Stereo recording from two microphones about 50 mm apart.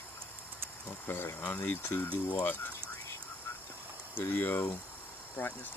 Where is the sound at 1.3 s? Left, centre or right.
Left.